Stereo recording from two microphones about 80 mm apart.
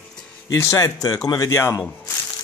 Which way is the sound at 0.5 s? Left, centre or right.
Left.